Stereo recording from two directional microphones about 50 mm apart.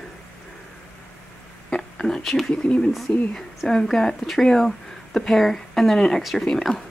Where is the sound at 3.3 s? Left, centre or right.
Centre.